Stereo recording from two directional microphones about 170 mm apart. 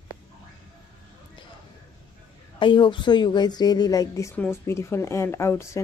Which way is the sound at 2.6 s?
30° left (ahead or behind).